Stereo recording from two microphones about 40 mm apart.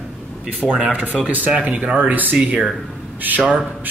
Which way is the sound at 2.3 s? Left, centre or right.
Right.